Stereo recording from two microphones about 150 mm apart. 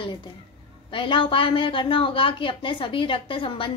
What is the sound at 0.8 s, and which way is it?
A woman's voice, 35° left (ahead or behind).